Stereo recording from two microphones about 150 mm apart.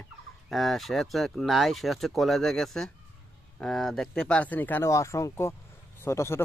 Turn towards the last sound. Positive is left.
turn(degrees=15)  # may be behind; listen again after turning